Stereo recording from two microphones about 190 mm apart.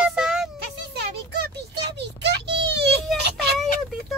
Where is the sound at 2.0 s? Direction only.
65° right (ahead or behind).